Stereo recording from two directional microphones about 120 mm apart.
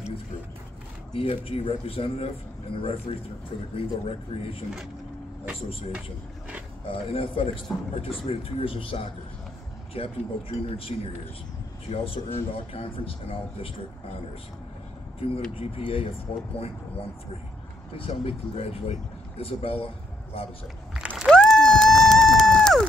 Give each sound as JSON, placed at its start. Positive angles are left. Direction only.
{"t": 1.1, "sound": "speech", "side_deg": 50}
{"t": 6.9, "sound": "speech", "side_deg": 50}
{"t": 15.5, "sound": "speech", "side_deg": 50}
{"t": 17.9, "sound": "speech", "side_deg": 50}
{"t": 20.9, "sound": "a sound", "side_deg": -5}
{"t": 21.3, "sound": "a sound", "side_deg": 5}